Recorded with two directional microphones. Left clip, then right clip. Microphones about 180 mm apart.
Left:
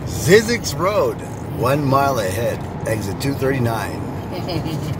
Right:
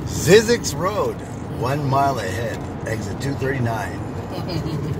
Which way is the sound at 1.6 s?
30° left (ahead or behind).